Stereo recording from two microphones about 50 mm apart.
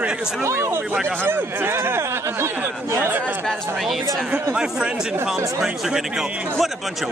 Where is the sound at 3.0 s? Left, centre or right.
Right.